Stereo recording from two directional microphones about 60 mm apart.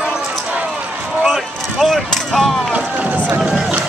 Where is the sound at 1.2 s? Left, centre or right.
Centre.